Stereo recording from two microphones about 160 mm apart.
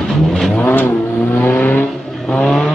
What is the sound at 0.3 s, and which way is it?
Vehicle, 5° left (ahead or behind).